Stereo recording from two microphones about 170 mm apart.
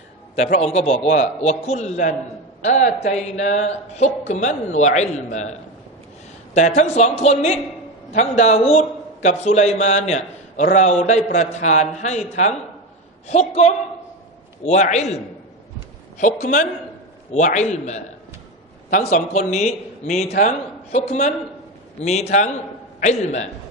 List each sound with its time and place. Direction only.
0.4 s a man's voice: 40° left (ahead or behind)